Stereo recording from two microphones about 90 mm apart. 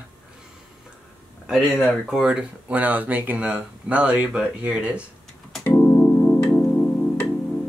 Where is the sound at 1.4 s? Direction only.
Centre (ahead or behind).